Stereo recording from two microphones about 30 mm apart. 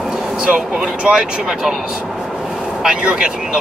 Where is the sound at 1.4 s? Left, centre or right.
Centre.